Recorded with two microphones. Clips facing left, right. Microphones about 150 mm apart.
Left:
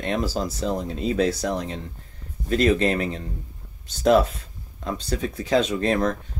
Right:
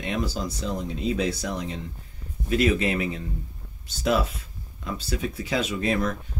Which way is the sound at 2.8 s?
40° left (ahead or behind).